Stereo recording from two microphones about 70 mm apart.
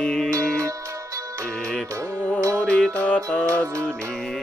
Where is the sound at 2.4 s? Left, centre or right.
Right.